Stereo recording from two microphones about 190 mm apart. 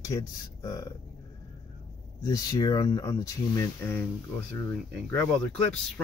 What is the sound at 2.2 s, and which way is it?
Speech, 20° left (ahead or behind).